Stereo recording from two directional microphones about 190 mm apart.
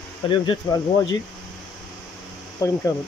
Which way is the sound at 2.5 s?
15° left (ahead or behind).